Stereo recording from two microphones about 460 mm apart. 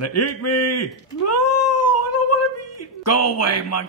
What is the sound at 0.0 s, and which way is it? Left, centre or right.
Speech, left.